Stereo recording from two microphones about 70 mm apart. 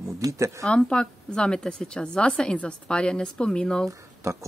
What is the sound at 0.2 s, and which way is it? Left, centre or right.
Speech, right.